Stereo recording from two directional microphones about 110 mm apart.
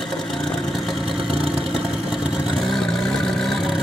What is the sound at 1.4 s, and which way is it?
Vehicle, 5° right (ahead or behind).